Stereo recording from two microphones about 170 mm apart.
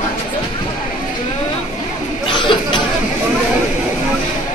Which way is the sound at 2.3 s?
25° left (ahead or behind).